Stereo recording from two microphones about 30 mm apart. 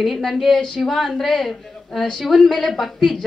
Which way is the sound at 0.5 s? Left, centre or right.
Centre.